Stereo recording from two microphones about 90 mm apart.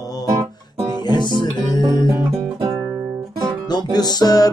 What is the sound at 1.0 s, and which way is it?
Guitar, 55° left (ahead or behind).